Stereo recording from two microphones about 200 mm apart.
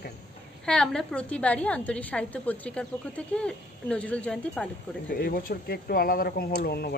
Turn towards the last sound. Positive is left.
turn(degrees=50)  # may be behind; listen again after turning